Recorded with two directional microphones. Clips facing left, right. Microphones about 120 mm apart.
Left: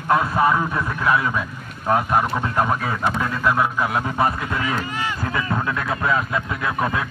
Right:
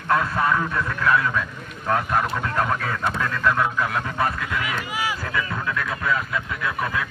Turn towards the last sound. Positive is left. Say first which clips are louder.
# left 3 dB
turn(degrees=35)  # may be behind; listen again after turning